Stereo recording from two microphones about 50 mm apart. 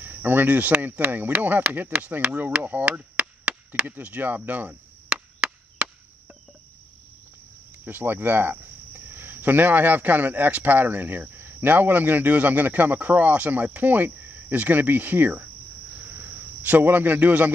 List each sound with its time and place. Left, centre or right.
0.0 s speech: right
2.6 s chop: right
3.8 s speech: right
5.1 s chop: centre
7.8 s speech: right